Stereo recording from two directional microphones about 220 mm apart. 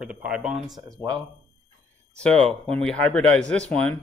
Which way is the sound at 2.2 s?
5° left (ahead or behind).